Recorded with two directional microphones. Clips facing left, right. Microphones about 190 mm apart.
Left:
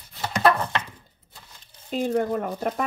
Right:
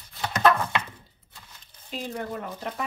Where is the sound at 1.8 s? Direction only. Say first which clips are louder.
Left 9 dB; 50° left (ahead or behind).